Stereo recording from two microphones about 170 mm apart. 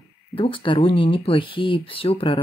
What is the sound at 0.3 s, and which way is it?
Speech, 30° left (ahead or behind).